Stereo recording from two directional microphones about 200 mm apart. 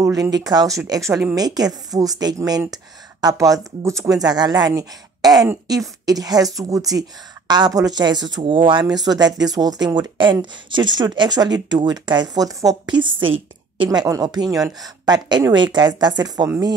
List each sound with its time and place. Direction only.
0.0 s speech: 20° right (ahead or behind)